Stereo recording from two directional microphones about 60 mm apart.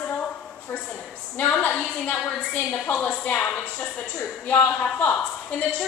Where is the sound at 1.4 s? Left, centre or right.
Left.